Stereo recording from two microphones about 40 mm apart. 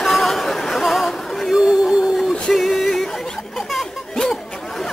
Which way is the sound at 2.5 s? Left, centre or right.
Centre.